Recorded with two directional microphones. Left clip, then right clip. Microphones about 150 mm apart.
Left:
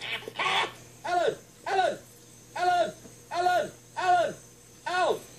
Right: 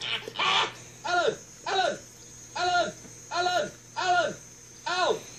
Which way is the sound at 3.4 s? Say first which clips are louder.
Left 5 dB; 5° right (ahead or behind).